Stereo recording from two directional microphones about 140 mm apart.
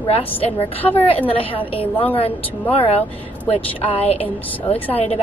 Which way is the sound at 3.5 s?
45° left (ahead or behind).